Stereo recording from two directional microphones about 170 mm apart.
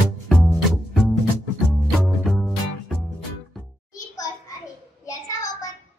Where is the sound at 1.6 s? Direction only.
Centre (ahead or behind).